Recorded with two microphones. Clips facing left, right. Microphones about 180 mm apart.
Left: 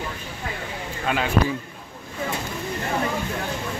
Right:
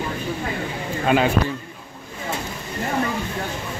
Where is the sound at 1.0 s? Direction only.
15° right (ahead or behind).